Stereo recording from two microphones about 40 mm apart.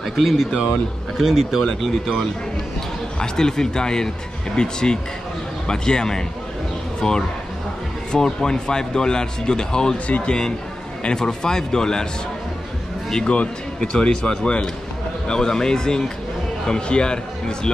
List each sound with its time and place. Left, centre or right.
0.0 s speech: centre
10.0 s speech: left
11.1 s speech: centre
13.2 s speech: left